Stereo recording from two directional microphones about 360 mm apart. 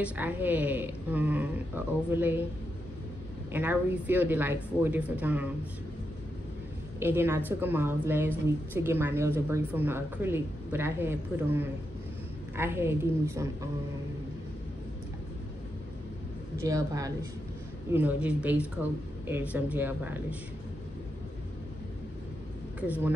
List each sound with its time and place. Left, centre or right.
0.0 s a woman's voice: centre
3.5 s a woman's voice: centre
7.0 s a woman's voice: centre
16.6 s a woman's voice: centre
22.8 s speech: centre